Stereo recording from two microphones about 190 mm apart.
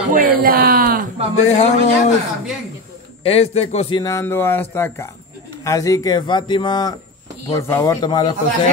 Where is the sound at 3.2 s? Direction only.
30° left (ahead or behind).